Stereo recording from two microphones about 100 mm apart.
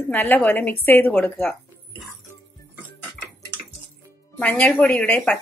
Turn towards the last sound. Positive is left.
turn(degrees=10)  # may be behind; listen again after turning